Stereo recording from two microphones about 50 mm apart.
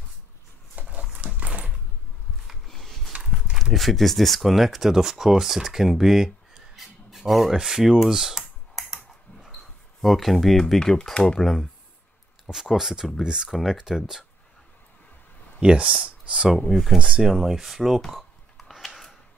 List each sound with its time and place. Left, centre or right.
0.7 s a sound: right
1.1 s dog: right
2.6 s a sound: centre
3.1 s walk: centre
3.7 s speech: centre
7.5 s computer keyboard: centre
10.0 s speech: centre
12.6 s speech: centre
13.5 s speech: centre
15.6 s speech: right
16.7 s speech: centre
17.0 s speech: centre
17.3 s speech: centre